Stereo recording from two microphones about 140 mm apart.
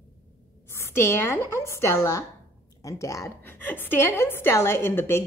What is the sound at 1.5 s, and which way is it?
A woman's voice, 20° left (ahead or behind).